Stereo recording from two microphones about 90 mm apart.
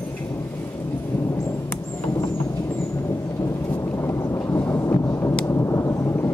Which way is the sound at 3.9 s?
30° left (ahead or behind).